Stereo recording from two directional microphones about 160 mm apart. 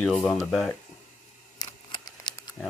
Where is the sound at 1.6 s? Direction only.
25° left (ahead or behind).